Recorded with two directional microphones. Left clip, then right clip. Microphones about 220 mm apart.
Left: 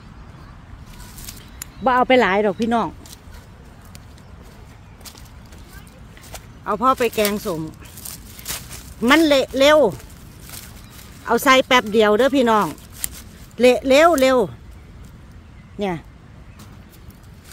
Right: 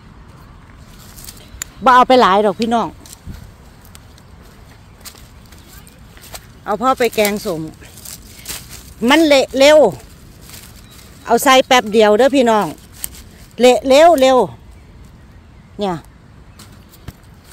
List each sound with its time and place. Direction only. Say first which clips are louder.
1.8 s speech: right 6 dB; 10° right (ahead or behind)
6.6 s speech: right 3 dB; 15° right (ahead or behind)
8.0 s a sound: right 1 dB; centre (ahead or behind)
9.0 s speech: right 4 dB; 15° right (ahead or behind)
11.2 s speech: right 4 dB; 10° right (ahead or behind)
15.8 s speech: right 4 dB; 15° right (ahead or behind)